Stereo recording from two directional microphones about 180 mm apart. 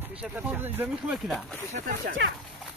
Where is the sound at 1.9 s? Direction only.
65° right (ahead or behind).